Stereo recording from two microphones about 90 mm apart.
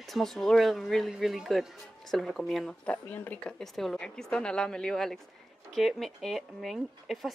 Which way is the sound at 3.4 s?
5° left (ahead or behind).